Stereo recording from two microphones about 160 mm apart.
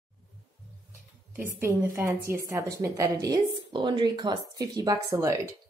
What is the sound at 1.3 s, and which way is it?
A woman's voice, 15° right (ahead or behind).